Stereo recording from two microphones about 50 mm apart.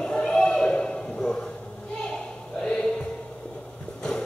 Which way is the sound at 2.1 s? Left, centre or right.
Centre.